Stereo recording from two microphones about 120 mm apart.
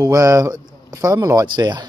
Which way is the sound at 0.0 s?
25° right (ahead or behind).